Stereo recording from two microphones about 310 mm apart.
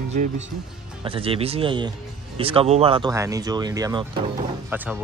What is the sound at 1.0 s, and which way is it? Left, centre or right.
Speech, centre.